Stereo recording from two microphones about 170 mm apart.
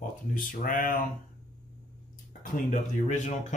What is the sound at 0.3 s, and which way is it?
Speech, 50° left (ahead or behind).